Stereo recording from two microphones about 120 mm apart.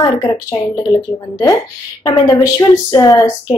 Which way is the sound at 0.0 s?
30° left (ahead or behind).